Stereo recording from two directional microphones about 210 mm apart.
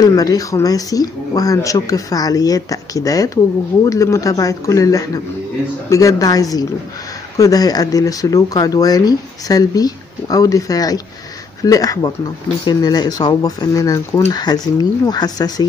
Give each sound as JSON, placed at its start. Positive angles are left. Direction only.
{"t": 0.0, "sound": "speech", "side_deg": 15}